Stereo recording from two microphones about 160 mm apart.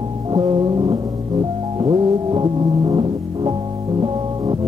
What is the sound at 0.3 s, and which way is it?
Music, 30° right (ahead or behind).